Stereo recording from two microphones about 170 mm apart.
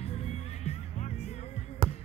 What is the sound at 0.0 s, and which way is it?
Music, 40° left (ahead or behind).